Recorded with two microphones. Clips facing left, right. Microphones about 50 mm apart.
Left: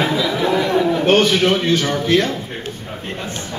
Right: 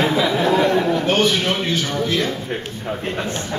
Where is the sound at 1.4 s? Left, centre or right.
Left.